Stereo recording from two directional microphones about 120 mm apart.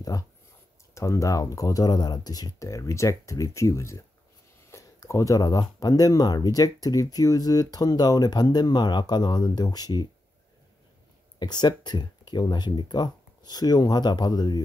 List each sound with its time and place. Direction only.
0.1 s a sound: 30° left (ahead or behind)
0.9 s speech: 25° left (ahead or behind)
11.3 s speech: 35° left (ahead or behind)